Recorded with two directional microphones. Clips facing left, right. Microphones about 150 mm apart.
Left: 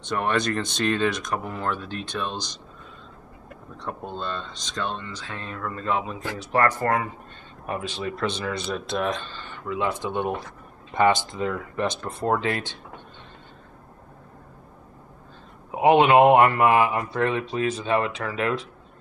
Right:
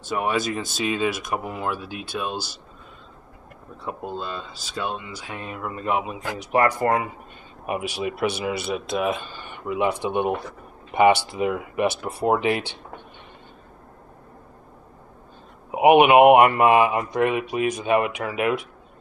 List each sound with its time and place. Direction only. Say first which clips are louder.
0.0 s speech: even; 5° right (ahead or behind)
3.7 s speech: right 2 dB; 5° right (ahead or behind)
15.7 s speech: right 2 dB; 15° right (ahead or behind)